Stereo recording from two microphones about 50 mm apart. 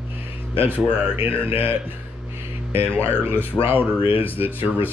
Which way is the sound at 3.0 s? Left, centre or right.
Right.